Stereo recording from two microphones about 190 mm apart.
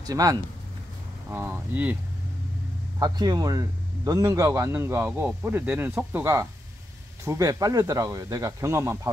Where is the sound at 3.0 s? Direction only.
20° right (ahead or behind).